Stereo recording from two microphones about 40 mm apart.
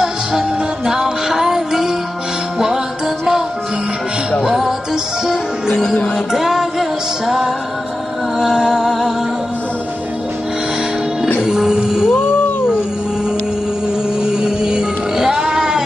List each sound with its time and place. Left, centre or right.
0.0 s music: centre
4.5 s music: centre
6.1 s music: centre
11.4 s music: centre
12.1 s music: left
14.2 s music: centre